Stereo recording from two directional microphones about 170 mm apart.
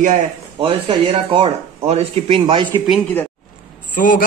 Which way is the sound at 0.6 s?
30° right (ahead or behind).